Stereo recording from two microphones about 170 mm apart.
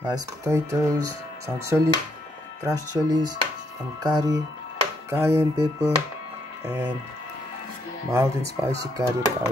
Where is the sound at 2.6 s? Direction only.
20° right (ahead or behind).